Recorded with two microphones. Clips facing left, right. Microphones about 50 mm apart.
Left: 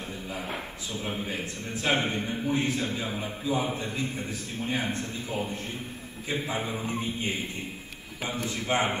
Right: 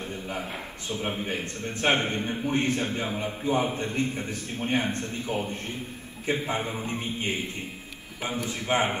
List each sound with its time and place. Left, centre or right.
0.8 s a man's voice: right
8.5 s a man's voice: right